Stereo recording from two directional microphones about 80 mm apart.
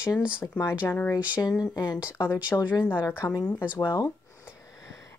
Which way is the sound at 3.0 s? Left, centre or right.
Left.